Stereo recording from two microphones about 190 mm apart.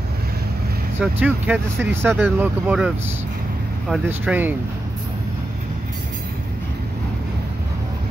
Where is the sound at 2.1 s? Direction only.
Centre (ahead or behind).